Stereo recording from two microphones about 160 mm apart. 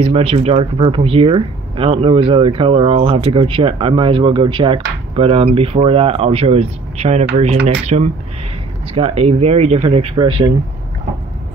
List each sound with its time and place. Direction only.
0.0 s speech: 35° right (ahead or behind)